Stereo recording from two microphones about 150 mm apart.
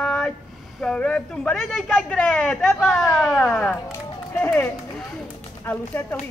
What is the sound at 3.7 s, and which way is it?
Speech, 15° left (ahead or behind).